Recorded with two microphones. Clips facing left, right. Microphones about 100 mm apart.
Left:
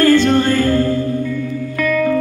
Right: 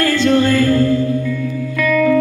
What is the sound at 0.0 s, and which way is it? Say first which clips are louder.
Music: left 2 dB; 45° left (ahead or behind).